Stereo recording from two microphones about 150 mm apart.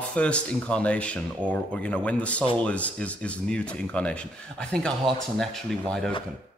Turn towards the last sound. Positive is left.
turn(degrees=5)  # may be behind; listen again after turning